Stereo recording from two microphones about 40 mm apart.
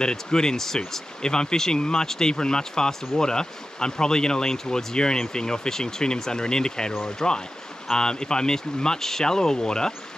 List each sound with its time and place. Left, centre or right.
0.0 s speech: centre